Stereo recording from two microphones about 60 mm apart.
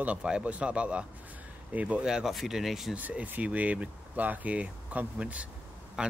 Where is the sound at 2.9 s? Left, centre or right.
Right.